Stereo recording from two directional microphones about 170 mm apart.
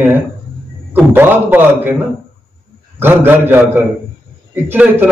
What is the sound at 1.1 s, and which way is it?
Speech, 10° right (ahead or behind).